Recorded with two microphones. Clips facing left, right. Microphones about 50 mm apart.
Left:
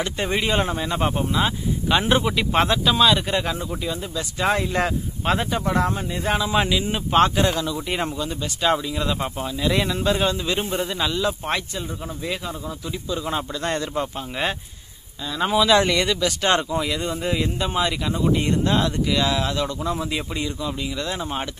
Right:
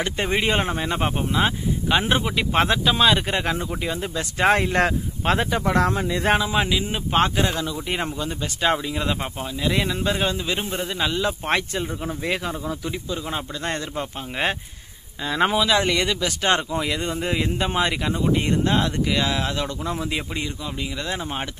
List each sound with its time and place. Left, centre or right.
0.3 s speech: right
1.9 s a man's voice: centre; by 4.6 s right
4.6 s speech: right
6.5 s speech: centre
8.2 s a man's voice: right
8.7 s speech: right
9.4 s speech: centre
11.1 s speech: right
11.4 s speech: right
12.3 s speech: right
13.1 s speech: centre
15.2 s speech: right
15.5 s a man's voice: centre; by 18.1 s right
18.1 s speech: centre